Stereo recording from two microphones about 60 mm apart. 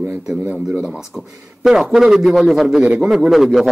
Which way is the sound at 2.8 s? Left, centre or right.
Centre.